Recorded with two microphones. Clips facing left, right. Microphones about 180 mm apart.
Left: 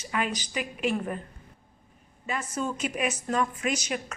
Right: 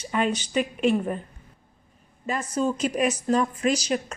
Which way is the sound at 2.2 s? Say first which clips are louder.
Right 6 dB; 35° right (ahead or behind).